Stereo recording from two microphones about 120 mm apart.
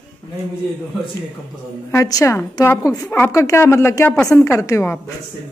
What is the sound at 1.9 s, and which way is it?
A woman's voice, 30° left (ahead or behind).